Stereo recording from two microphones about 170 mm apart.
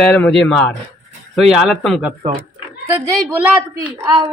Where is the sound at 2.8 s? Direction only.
15° right (ahead or behind).